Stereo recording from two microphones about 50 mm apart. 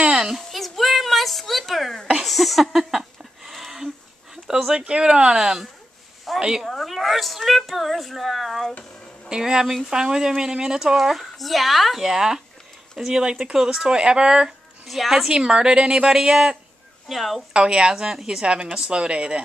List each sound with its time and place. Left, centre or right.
0.4 s a sound: centre
2.2 s speech: centre
3.0 s a sound: centre
4.5 s speech: centre
6.3 s a sound: centre
6.7 s speech: centre
9.3 s speech: centre
14.9 s speech: centre
15.2 s speech: centre
17.1 s speech: centre
17.5 s speech: centre